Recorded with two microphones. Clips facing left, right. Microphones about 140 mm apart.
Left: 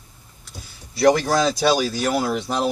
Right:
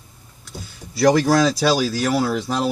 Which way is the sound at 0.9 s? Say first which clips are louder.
Right 2 dB; centre (ahead or behind).